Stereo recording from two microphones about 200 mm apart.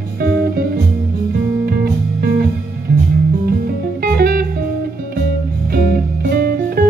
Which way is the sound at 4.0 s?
45° right (ahead or behind).